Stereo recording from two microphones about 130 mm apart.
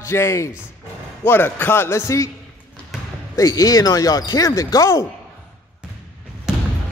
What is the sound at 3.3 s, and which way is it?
Speech, 25° left (ahead or behind).